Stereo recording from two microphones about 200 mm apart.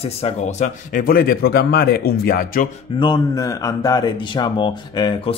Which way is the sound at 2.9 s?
20° left (ahead or behind).